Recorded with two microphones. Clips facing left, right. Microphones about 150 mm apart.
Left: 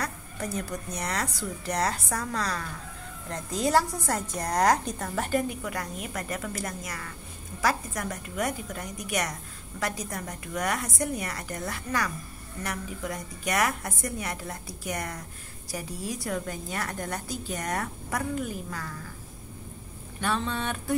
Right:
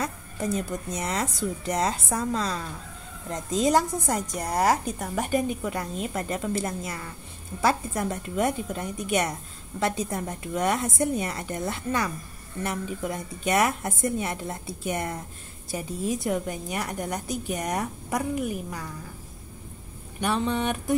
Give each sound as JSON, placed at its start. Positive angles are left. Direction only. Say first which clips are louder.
{"t": 0.0, "sound": "a woman's voice", "louder": "right 4 dB", "side_deg": -25}
{"t": 20.2, "sound": "a woman's voice", "louder": "right 4 dB", "side_deg": -15}